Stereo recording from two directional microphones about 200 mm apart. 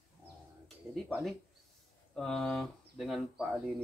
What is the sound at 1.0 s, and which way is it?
Speech, centre (ahead or behind).